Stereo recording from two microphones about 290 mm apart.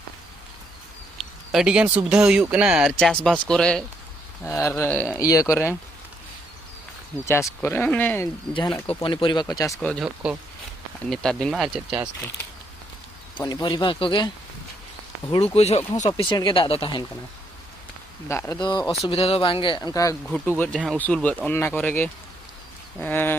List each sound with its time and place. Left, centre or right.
1.1 s speech: centre
7.2 s speech: centre
9.7 s speech: centre
13.4 s speech: centre
18.3 s speech: centre